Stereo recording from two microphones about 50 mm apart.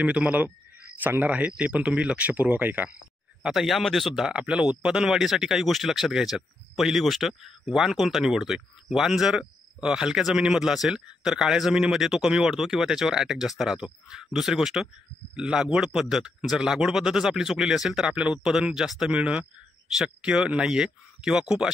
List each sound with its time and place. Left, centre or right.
0.0 s a man's voice: right
3.4 s speech: centre
4.3 s a man's voice: right